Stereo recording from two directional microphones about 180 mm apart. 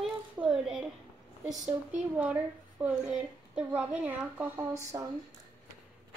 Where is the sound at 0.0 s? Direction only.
5° right (ahead or behind).